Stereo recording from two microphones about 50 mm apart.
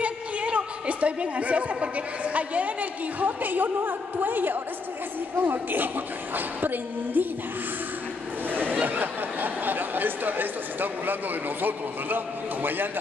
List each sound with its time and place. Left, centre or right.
0.0 s a woman's voice: right
8.5 s chatter: right
8.8 s speech: right